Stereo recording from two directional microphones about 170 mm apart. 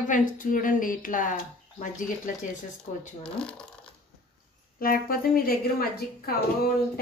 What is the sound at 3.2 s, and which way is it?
Speech, 5° left (ahead or behind).